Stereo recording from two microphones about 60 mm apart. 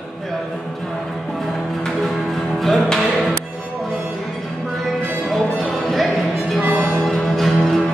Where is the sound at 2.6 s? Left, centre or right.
Centre.